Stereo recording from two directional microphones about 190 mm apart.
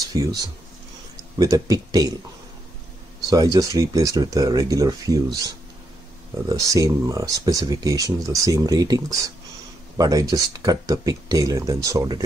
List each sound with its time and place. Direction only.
0.1 s speech: 20° right (ahead or behind)
1.4 s speech: 20° right (ahead or behind)
3.3 s speech: 20° right (ahead or behind)